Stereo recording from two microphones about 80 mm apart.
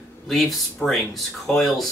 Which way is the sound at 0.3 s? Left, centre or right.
Centre.